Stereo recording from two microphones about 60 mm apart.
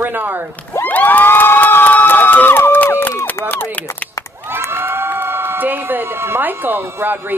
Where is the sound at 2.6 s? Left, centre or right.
Left.